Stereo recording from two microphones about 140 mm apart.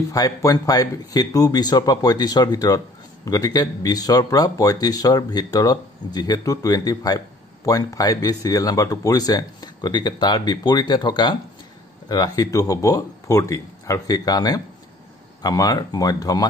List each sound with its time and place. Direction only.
0.1 s speech: 25° left (ahead or behind)